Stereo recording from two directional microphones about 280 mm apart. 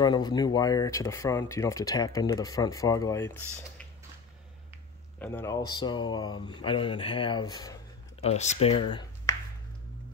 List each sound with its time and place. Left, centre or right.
0.0 s speech: centre
5.2 s speech: centre